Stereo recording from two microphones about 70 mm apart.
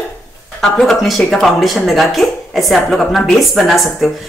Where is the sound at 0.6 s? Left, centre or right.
Centre.